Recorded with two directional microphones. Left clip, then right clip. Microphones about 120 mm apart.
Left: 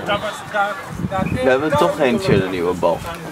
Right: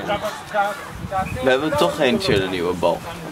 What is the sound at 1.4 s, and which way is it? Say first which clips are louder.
Speech: left 3 dB; 30° right (ahead or behind).